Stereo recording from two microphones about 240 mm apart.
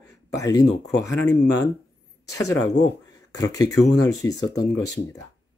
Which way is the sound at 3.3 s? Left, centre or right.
Centre.